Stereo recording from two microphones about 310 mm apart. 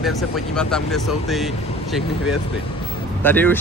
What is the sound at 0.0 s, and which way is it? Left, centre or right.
Speech, centre.